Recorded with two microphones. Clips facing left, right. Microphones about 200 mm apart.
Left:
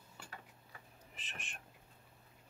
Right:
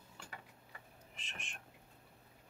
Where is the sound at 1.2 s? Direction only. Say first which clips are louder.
Left 1 dB; 5° left (ahead or behind).